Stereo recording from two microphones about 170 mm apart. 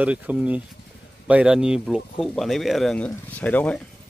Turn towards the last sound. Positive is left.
turn(degrees=5)  # may be behind; listen again after turning